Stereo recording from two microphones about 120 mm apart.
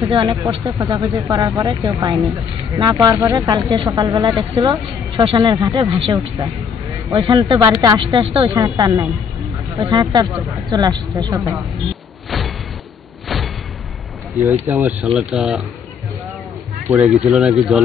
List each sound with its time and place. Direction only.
0.1 s speech: 45° right (ahead or behind)
5.1 s speech: 50° right (ahead or behind)
5.4 s speech: 35° right (ahead or behind)
6.1 s speech: 30° right (ahead or behind)
8.2 s speech: 45° right (ahead or behind)
8.5 s speech: 30° right (ahead or behind)
11.8 s a sound: centre (ahead or behind)
14.4 s speech: 20° right (ahead or behind)
17.0 s speech: centre (ahead or behind)